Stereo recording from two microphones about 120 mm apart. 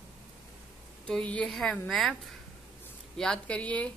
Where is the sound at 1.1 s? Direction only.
10° left (ahead or behind).